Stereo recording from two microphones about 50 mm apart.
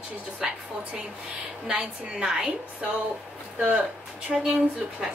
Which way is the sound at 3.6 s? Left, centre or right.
Right.